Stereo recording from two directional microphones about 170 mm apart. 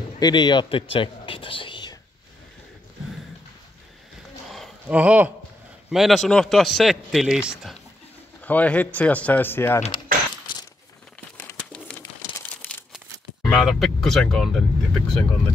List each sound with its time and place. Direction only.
0.2 s speech: 25° left (ahead or behind)
0.9 s whispering: 30° left (ahead or behind)
4.8 s a man's voice: 10° right (ahead or behind)
8.4 s speech: 10° left (ahead or behind)
11.3 s crumpling: 10° left (ahead or behind)
12.0 s crumpling: 20° left (ahead or behind)
13.5 s a man's voice: centre (ahead or behind)